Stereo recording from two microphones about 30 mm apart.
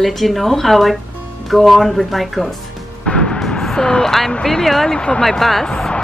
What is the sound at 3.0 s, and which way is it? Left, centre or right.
Music, left.